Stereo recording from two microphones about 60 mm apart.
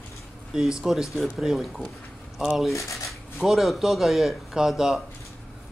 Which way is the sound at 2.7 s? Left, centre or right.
Left.